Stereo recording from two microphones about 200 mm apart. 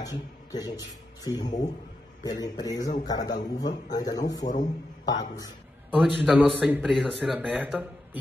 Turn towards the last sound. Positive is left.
turn(degrees=-5)  # may be behind; listen again after turning